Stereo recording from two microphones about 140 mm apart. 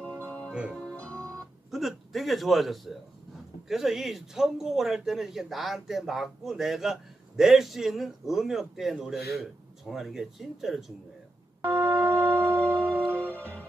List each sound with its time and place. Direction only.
0.0 s music: 10° left (ahead or behind)
0.5 s speech: 5° right (ahead or behind)
0.8 s music: 10° left (ahead or behind)
3.6 s a man's voice: centre (ahead or behind)
11.6 s music: 15° right (ahead or behind)